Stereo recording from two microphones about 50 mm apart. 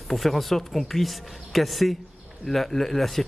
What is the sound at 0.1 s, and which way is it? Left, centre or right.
Speech, centre.